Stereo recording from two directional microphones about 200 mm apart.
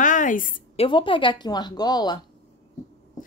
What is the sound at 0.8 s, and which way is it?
A woman's voice, 25° left (ahead or behind).